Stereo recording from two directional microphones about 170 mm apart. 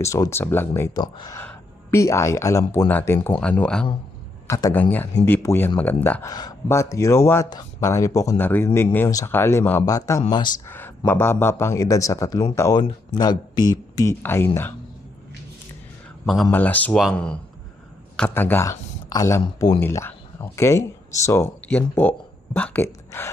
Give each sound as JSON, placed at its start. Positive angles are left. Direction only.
{"t": 0.0, "sound": "speech", "side_deg": 15}
{"t": 4.5, "sound": "speech", "side_deg": 20}
{"t": 16.5, "sound": "speech", "side_deg": 10}
{"t": 19.8, "sound": "speech", "side_deg": 15}